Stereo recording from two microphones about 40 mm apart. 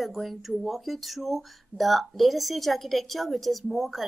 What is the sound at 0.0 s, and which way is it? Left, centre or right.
Speech, centre.